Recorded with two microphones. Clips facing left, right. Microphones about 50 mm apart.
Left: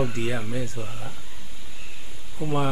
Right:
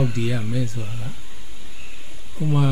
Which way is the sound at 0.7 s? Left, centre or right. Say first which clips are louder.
Right 2 dB; centre.